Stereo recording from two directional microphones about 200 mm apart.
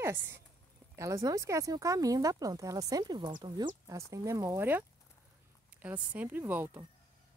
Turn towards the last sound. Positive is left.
turn(degrees=-10)  # may be behind; listen again after turning